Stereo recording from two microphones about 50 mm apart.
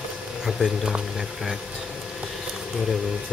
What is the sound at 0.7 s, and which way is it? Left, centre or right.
Speech, centre.